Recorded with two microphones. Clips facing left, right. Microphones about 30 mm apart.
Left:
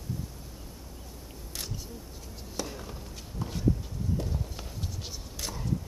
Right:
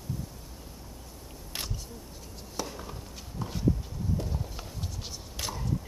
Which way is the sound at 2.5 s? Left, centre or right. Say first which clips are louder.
Even; centre.